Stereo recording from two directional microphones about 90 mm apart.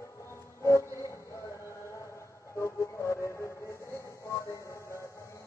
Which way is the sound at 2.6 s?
30° left (ahead or behind).